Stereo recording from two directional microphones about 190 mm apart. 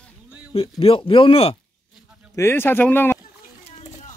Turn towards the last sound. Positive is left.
turn(degrees=10)  # may be behind; listen again after turning